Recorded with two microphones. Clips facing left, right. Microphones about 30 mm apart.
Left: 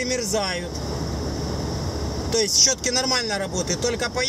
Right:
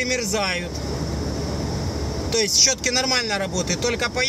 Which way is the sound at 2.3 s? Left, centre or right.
Centre.